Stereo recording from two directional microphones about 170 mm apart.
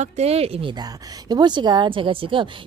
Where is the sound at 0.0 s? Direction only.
40° right (ahead or behind).